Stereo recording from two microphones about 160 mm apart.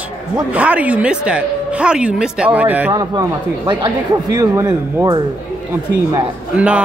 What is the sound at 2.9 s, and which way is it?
Speech, 25° right (ahead or behind).